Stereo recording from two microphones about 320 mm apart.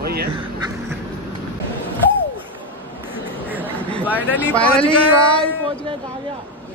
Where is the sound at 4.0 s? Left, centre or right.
Centre.